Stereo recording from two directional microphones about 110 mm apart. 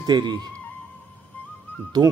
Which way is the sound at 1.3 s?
15° left (ahead or behind).